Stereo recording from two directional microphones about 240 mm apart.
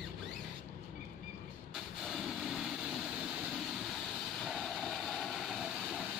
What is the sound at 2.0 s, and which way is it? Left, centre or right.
Vehicle, centre.